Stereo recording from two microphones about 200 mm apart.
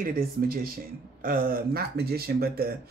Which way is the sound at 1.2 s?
45° right (ahead or behind).